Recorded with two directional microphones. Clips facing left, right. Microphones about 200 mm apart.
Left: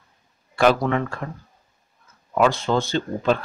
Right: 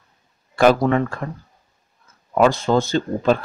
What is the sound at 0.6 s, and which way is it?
Speech, 40° right (ahead or behind).